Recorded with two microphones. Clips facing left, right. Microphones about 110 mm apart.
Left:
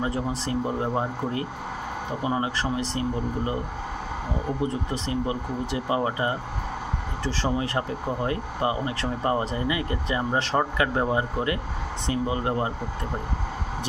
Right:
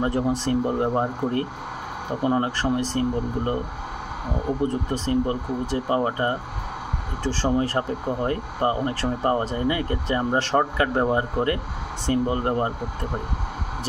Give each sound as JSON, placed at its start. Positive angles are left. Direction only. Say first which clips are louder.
{"t": 0.0, "sound": "speech", "louder": "right 5 dB", "side_deg": -50}
{"t": 5.0, "sound": "speech", "louder": "right 6 dB", "side_deg": -45}
{"t": 7.4, "sound": "speech", "louder": "right 4 dB", "side_deg": -40}